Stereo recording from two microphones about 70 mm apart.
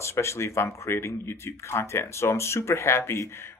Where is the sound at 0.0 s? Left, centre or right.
Left.